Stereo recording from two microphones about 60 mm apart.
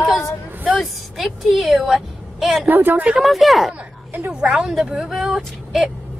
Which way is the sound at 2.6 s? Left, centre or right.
Right.